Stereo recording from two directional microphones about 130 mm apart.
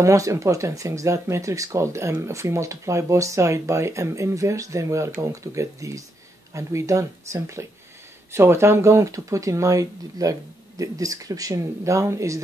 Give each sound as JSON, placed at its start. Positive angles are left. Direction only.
{"t": 0.0, "sound": "speech", "side_deg": -25}